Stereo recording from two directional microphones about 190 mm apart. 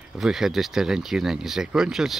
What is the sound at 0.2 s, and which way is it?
Speech, centre (ahead or behind).